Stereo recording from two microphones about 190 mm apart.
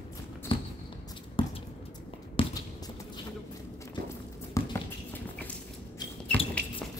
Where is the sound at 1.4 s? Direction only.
25° left (ahead or behind).